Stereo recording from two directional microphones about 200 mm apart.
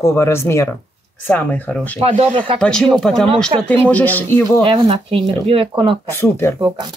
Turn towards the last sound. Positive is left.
turn(degrees=15)  # may be behind; listen again after turning